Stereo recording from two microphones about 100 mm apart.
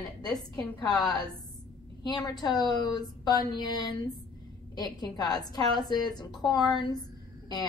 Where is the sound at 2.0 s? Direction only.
40° left (ahead or behind).